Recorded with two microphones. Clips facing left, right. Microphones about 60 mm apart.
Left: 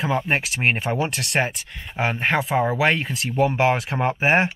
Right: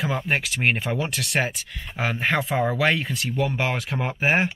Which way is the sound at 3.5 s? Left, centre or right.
Centre.